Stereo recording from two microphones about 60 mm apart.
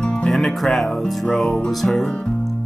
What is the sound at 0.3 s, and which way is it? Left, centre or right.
Speech, centre.